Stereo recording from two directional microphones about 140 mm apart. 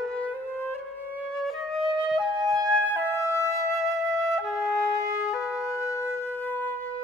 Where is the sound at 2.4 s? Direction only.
25° right (ahead or behind).